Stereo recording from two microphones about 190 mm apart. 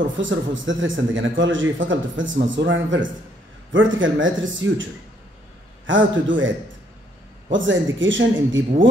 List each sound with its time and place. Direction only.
0.2 s a man's voice: 80° right
5.9 s a man's voice: 80° right
7.5 s a man's voice: 80° right